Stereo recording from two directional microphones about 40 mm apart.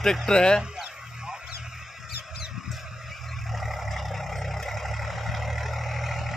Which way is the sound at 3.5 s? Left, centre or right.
Centre.